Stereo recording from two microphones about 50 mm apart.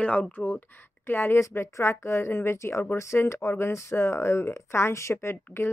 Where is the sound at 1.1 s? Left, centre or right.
Left.